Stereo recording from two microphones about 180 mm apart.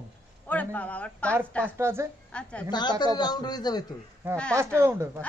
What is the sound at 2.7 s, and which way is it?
A man's voice, 25° left (ahead or behind).